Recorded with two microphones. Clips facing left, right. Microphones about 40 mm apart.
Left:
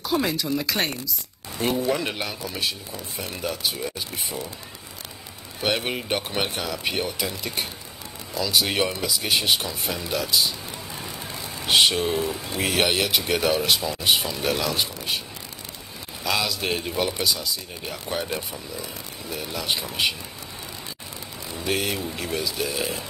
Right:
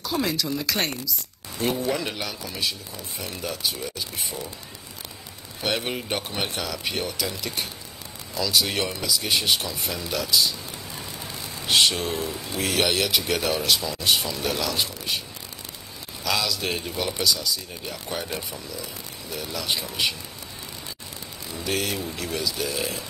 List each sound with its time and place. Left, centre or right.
0.0 s speech: centre
2.0 s speech: centre
5.6 s speech: centre
16.3 s speech: centre
21.5 s speech: centre